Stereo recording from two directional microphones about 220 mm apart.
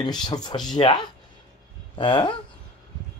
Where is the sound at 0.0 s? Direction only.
20° left (ahead or behind).